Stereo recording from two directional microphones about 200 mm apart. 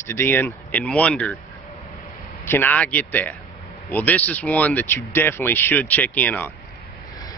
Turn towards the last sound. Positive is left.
turn(degrees=10)  # may be behind; listen again after turning